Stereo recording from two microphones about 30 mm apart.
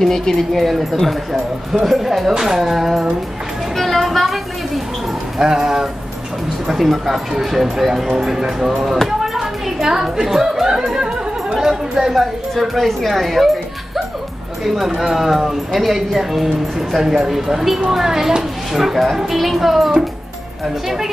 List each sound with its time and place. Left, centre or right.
0.1 s speech: centre
0.5 s speech: centre
0.9 s speech: centre
1.7 s speech: centre
3.7 s a sound: centre
5.4 s speech: centre
6.7 s speech: centre
9.2 s a sound: centre
11.0 s speech: right
12.1 s speech: centre
14.6 s speech: centre